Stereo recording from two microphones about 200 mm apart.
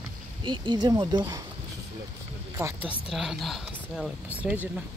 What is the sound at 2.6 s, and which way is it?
Speech, 15° right (ahead or behind).